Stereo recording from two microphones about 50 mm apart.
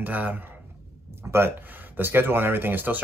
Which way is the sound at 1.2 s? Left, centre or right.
Right.